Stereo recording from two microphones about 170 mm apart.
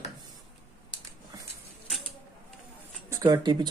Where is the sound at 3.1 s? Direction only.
20° right (ahead or behind).